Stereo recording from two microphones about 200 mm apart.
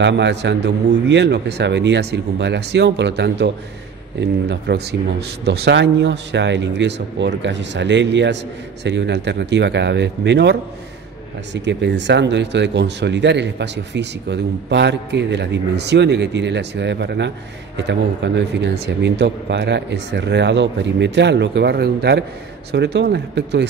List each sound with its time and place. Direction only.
0.0 s speech: 60° right (ahead or behind)